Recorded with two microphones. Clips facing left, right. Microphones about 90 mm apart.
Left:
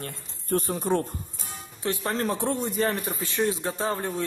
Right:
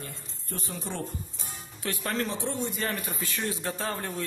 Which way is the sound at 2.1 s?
45° left (ahead or behind).